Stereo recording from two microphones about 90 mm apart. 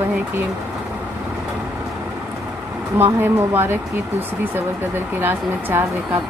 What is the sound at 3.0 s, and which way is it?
Speech, 25° right (ahead or behind).